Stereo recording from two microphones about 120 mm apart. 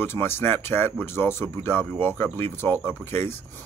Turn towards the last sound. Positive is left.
turn(degrees=20)  # may be behind; listen again after turning